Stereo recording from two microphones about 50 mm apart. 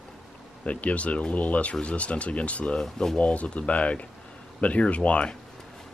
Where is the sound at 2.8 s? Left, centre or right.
Centre.